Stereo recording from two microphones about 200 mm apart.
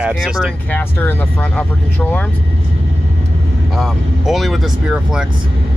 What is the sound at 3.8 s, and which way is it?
Speech, centre (ahead or behind).